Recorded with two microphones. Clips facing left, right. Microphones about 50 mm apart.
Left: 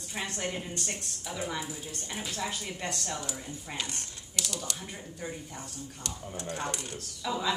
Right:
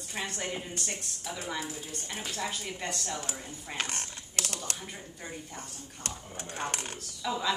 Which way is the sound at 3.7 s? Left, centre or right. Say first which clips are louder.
Right 3 dB; right.